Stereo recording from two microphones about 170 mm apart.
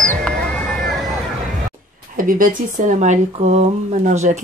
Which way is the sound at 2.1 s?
55° right (ahead or behind).